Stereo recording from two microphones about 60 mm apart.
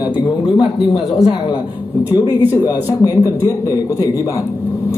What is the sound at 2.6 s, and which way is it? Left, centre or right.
Speech, left.